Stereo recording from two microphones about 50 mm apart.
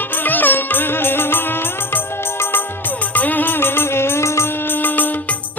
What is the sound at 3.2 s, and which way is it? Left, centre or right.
Music, left.